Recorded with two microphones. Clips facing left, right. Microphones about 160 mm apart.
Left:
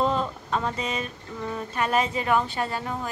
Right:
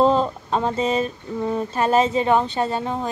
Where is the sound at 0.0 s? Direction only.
35° right (ahead or behind).